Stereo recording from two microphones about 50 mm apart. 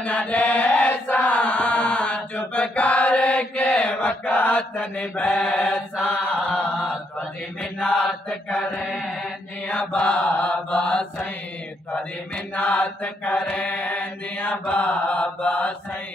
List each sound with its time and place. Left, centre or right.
0.3 s chant: left
3.6 s mantra: left
7.8 s mantra: left
9.7 s mantra: left
12.5 s mantra: left